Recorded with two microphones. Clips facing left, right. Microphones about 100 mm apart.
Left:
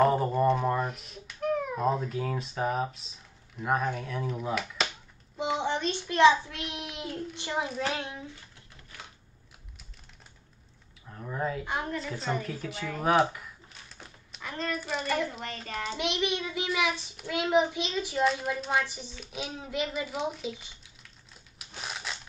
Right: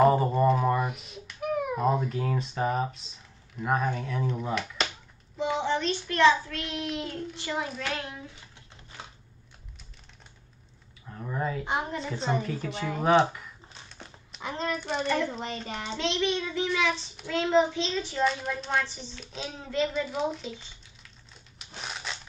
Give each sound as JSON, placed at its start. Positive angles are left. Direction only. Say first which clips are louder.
{"t": 0.0, "sound": "speech", "louder": "right 2 dB", "side_deg": 0}
{"t": 5.6, "sound": "a child's voice", "louder": "right 2 dB", "side_deg": 15}
{"t": 11.1, "sound": "a sound", "louder": "right 1 dB", "side_deg": 0}
{"t": 11.6, "sound": "a woman's voice", "louder": "right 2 dB", "side_deg": -20}
{"t": 12.4, "sound": "a child's voice", "louder": "right 3 dB", "side_deg": 0}
{"t": 13.0, "sound": "a sound", "louder": "right 2 dB", "side_deg": 0}
{"t": 14.4, "sound": "hands", "louder": "right 3 dB", "side_deg": -20}
{"t": 14.8, "sound": "a child's voice", "louder": "right 2 dB", "side_deg": 5}
{"t": 15.4, "sound": "a woman's voice", "louder": "right 1 dB", "side_deg": -20}
{"t": 15.9, "sound": "speech", "louder": "right 2 dB", "side_deg": 15}
{"t": 18.2, "sound": "speech", "louder": "even", "side_deg": 0}
{"t": 21.5, "sound": "a sound", "louder": "even", "side_deg": 0}